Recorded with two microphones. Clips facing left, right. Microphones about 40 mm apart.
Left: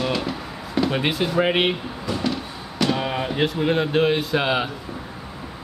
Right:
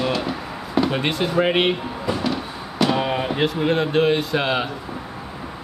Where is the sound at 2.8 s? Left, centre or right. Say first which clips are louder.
Right 2 dB; centre.